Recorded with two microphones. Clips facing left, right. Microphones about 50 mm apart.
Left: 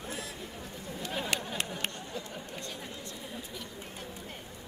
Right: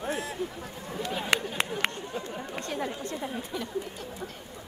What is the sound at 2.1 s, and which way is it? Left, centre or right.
Chatter, right.